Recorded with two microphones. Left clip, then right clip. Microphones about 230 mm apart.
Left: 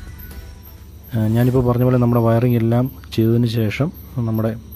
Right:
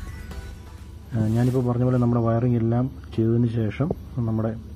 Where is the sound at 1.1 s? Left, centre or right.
Left.